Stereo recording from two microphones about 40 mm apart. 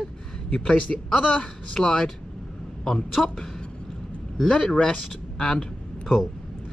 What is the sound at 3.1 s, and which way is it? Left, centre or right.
Speech, centre.